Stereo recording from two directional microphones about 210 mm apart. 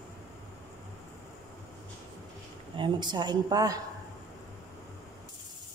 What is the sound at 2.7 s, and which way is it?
Speech, 20° right (ahead or behind).